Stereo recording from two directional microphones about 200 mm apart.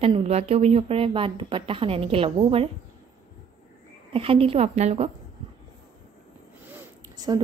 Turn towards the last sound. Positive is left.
turn(degrees=-20)  # may be behind; listen again after turning